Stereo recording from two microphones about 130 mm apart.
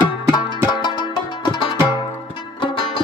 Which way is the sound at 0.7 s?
40° left (ahead or behind).